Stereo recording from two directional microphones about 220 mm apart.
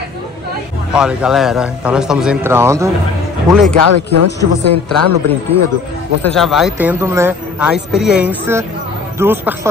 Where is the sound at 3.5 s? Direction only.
Centre (ahead or behind).